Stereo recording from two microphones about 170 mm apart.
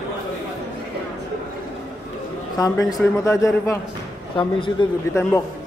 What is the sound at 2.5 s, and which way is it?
Speech, 20° left (ahead or behind).